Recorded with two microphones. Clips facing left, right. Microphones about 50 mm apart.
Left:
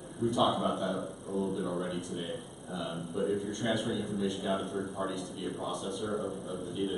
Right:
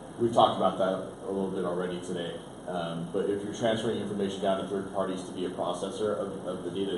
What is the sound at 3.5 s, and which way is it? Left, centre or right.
Speech, right.